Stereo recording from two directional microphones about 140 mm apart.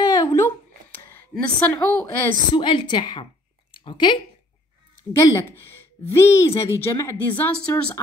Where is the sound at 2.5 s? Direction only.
35° left (ahead or behind).